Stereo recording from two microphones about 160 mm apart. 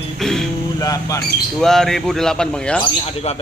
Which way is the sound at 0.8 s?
20° left (ahead or behind).